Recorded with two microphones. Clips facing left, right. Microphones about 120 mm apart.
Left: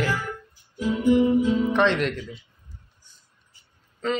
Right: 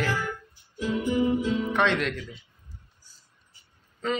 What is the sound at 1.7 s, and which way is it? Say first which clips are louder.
Music: left 3 dB; centre (ahead or behind).